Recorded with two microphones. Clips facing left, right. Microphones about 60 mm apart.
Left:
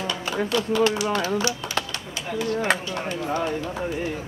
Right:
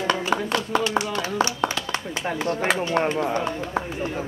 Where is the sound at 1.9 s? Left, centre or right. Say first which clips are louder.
Right 4 dB; right.